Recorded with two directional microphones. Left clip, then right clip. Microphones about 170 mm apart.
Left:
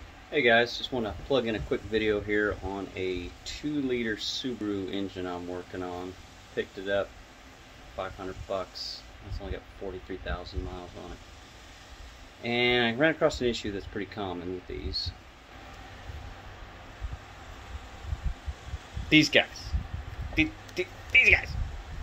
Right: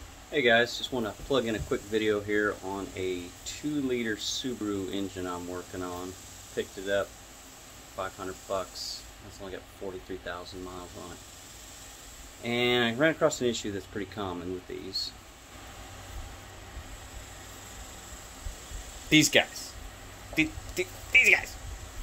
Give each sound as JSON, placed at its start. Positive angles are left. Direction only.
{"t": 0.3, "sound": "speech", "side_deg": 5}
{"t": 12.4, "sound": "speech", "side_deg": 10}
{"t": 19.0, "sound": "speech", "side_deg": -5}